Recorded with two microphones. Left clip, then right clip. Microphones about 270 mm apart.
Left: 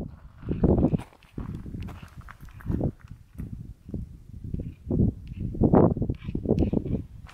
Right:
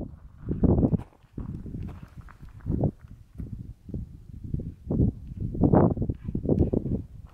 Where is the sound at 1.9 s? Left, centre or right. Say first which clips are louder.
Left 3 dB; centre.